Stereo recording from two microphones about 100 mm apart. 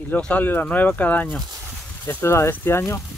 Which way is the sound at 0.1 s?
15° left (ahead or behind).